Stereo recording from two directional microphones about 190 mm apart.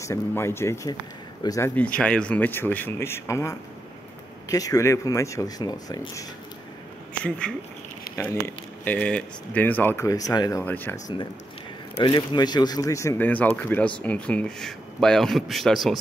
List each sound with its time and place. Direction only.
0.0 s speech: 15° left (ahead or behind)
2.0 s speech: 5° left (ahead or behind)
7.2 s speech: 5° left (ahead or behind)
8.8 s speech: 10° left (ahead or behind)
12.0 s speech: 25° left (ahead or behind); by 16.0 s centre (ahead or behind)